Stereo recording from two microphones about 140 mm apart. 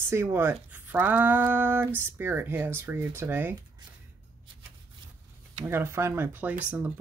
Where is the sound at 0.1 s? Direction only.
15° right (ahead or behind).